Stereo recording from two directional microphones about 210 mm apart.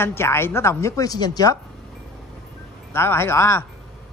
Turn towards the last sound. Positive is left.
turn(degrees=10)  # may be behind; listen again after turning